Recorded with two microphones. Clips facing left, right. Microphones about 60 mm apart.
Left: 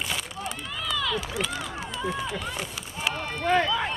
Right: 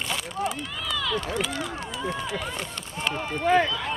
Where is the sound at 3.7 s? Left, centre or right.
Centre.